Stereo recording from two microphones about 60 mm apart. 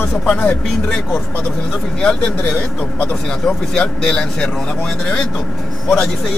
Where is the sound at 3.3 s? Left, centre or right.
Centre.